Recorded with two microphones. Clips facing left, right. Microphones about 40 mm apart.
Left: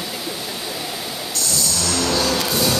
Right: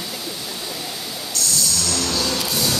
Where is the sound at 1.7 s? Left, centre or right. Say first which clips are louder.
Left 3 dB; centre.